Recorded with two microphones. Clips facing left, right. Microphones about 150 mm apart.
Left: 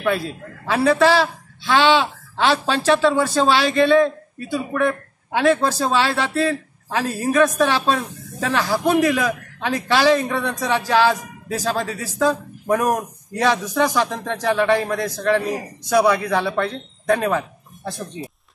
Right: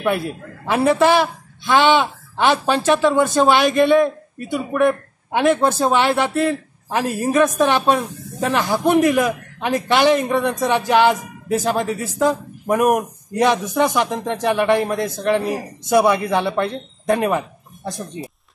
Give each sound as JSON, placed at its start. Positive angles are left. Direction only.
{"t": 0.7, "sound": "a man's voice", "side_deg": -20}